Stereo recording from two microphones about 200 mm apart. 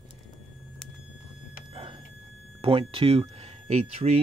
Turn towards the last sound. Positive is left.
turn(degrees=-30)  # may be behind; listen again after turning